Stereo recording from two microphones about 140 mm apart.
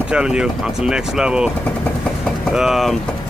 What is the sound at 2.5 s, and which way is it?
Speech, 5° right (ahead or behind).